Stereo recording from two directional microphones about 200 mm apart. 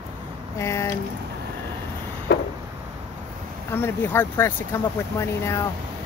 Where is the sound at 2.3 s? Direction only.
55° left (ahead or behind).